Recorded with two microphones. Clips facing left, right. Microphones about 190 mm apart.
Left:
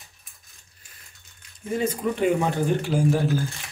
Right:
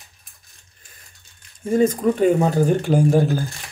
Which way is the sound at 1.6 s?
45° right (ahead or behind).